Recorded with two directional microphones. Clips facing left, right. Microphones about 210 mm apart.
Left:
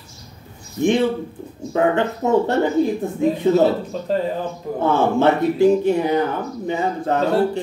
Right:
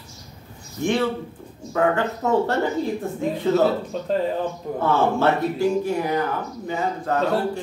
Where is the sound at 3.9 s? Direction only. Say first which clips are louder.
Left 1 dB; centre (ahead or behind).